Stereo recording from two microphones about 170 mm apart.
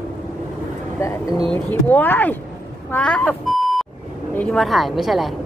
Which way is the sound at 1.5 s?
10° left (ahead or behind).